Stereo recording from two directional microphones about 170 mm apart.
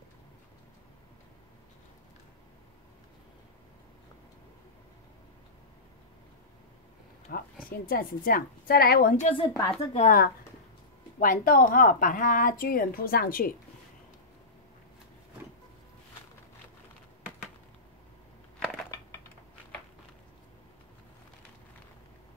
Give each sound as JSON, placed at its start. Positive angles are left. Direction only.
{"t": 7.3, "sound": "a sound", "side_deg": 65}
{"t": 7.7, "sound": "a woman's voice", "side_deg": 60}
{"t": 9.3, "sound": "speech", "side_deg": 30}
{"t": 9.9, "sound": "a woman's voice", "side_deg": 55}